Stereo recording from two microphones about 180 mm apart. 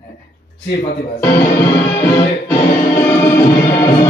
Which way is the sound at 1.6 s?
20° left (ahead or behind).